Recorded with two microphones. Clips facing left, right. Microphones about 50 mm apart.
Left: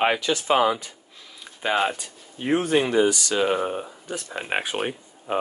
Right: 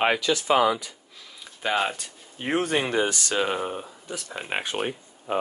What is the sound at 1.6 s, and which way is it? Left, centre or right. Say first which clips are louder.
Speech: left 2 dB; centre.